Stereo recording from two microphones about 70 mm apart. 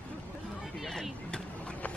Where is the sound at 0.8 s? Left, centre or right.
Centre.